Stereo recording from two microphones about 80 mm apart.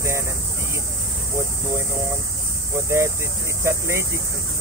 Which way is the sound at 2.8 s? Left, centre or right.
Right.